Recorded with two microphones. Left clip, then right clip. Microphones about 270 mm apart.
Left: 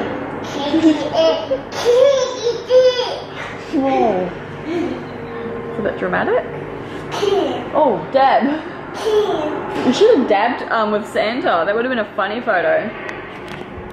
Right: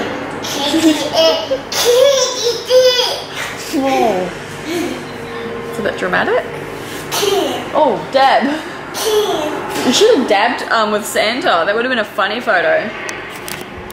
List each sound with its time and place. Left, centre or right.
0.0 s a sound: centre
3.7 s a woman's voice: centre
4.6 s a sound: centre
5.9 s a woman's voice: centre
7.7 s speech: left
8.1 s a woman's voice: centre